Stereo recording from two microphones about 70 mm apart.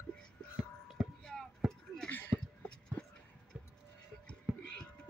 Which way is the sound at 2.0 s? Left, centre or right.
Left.